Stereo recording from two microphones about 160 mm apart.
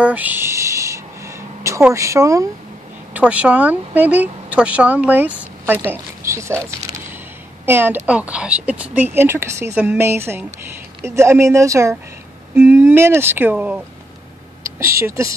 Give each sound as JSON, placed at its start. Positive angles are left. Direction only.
{"t": 0.0, "sound": "a sound", "side_deg": -10}
{"t": 2.0, "sound": "a woman's voice", "side_deg": -20}
{"t": 3.1, "sound": "a woman's voice", "side_deg": -10}
{"t": 7.6, "sound": "a woman's voice", "side_deg": -15}
{"t": 15.0, "sound": "a woman's voice", "side_deg": -20}